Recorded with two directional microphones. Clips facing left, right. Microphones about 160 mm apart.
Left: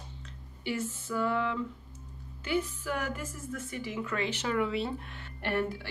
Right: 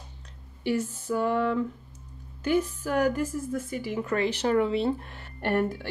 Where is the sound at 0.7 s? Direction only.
40° right (ahead or behind).